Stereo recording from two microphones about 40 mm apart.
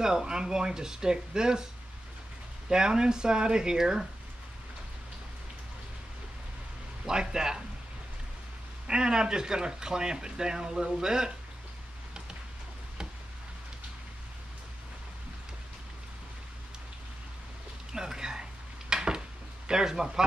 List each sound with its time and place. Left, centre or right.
0.0 s speech: centre
2.7 s speech: centre
7.1 s speech: centre
8.8 s speech: centre
17.9 s a sound: centre
19.7 s speech: centre